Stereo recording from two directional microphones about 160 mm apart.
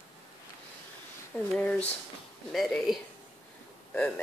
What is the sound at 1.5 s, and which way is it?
Speech, 5° left (ahead or behind).